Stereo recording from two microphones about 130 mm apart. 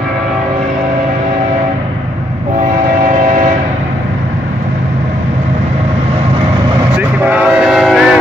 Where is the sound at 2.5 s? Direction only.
70° right (ahead or behind).